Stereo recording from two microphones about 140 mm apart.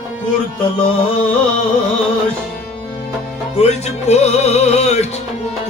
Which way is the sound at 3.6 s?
50° left (ahead or behind).